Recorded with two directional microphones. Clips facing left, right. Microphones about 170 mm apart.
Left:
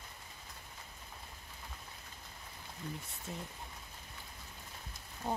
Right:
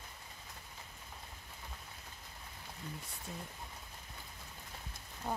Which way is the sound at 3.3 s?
20° left (ahead or behind).